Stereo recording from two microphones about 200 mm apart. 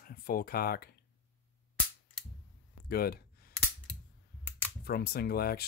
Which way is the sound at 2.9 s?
50° left (ahead or behind).